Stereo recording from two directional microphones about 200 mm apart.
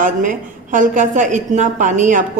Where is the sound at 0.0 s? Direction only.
40° right (ahead or behind).